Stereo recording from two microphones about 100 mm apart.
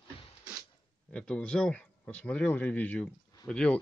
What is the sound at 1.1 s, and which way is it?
A man's voice, 10° left (ahead or behind).